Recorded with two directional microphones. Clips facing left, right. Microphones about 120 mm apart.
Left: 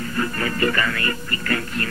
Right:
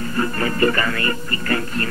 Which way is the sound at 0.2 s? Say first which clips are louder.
Right 3 dB; 35° right (ahead or behind).